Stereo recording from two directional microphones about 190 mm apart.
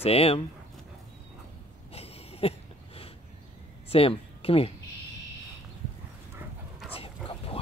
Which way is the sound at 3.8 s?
30° left (ahead or behind).